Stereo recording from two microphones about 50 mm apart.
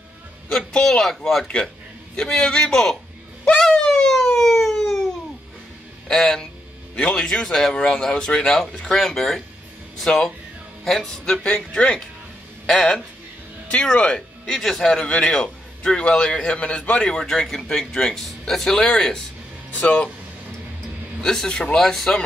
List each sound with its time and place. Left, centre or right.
0.5 s a man's voice: centre
3.5 s a sound: centre
6.0 s a man's voice: centre
11.4 s a man's voice: left
14.4 s a man's voice: centre
19.7 s speech: left
21.2 s a man's voice: centre